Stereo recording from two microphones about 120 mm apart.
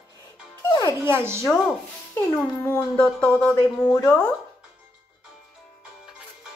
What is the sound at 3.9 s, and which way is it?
Speech, 20° left (ahead or behind).